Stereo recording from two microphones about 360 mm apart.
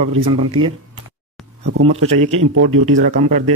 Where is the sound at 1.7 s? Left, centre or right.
Right.